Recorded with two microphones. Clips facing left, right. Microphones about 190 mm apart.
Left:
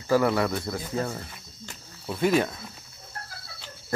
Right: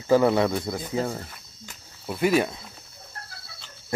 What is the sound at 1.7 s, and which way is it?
Cricket, 5° right (ahead or behind).